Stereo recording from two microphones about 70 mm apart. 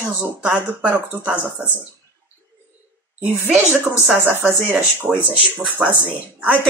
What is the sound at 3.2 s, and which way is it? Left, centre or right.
Speech, right.